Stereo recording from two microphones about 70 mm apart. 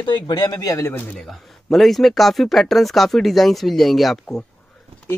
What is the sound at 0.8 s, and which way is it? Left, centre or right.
Speech, left.